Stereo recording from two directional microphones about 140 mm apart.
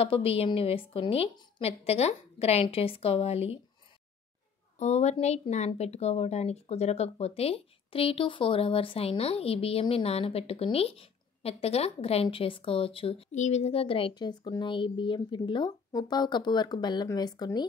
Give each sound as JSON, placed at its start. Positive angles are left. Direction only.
{"t": 0.0, "sound": "a woman's voice", "side_deg": 45}
{"t": 4.7, "sound": "a woman's voice", "side_deg": 55}